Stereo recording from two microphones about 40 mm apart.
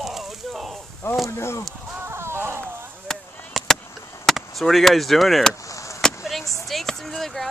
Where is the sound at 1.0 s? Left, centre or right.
Left.